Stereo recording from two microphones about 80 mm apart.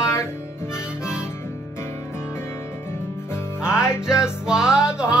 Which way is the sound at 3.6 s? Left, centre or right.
Centre.